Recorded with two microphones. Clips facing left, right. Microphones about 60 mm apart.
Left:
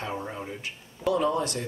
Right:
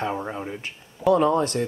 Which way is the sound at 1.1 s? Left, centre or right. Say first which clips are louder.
Right 6 dB; right.